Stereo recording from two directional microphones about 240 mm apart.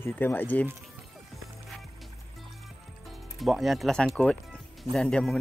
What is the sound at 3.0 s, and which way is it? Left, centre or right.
Music, centre.